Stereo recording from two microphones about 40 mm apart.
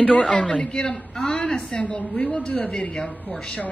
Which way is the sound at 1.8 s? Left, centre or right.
Left.